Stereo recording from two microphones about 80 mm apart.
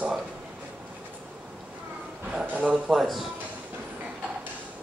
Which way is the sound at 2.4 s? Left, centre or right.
Centre.